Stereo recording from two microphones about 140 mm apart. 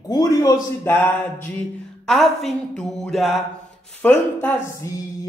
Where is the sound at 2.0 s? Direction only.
Centre (ahead or behind).